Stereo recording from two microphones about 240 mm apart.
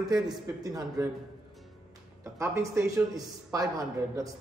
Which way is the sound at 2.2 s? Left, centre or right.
Centre.